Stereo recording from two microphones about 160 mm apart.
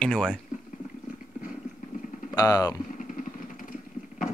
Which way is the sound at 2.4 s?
20° left (ahead or behind).